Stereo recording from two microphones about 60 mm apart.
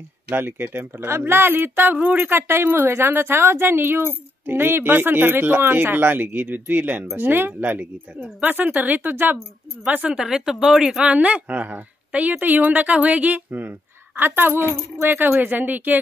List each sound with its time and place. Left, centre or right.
0.3 s a woman's voice: right
10.1 s speech: centre
11.1 s a woman's voice: right